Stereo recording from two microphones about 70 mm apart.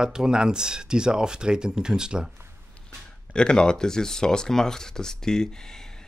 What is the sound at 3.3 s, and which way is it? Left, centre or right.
Speech, centre.